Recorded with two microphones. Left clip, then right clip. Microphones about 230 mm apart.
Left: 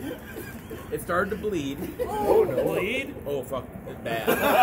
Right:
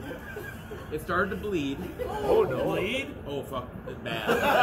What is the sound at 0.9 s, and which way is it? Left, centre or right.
Speech, centre.